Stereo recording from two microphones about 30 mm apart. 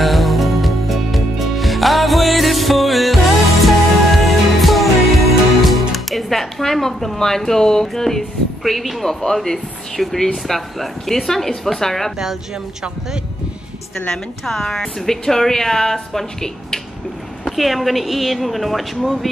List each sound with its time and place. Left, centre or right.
0.0 s music: centre
7.2 s speech: centre
10.3 s speech: centre
14.1 s speech: centre
17.5 s speech: centre